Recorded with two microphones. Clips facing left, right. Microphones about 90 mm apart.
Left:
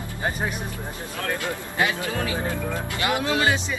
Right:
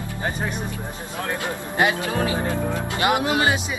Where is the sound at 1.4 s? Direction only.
20° right (ahead or behind).